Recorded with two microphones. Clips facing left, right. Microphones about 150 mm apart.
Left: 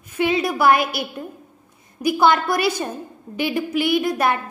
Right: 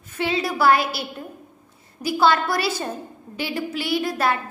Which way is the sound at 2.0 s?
15° left (ahead or behind).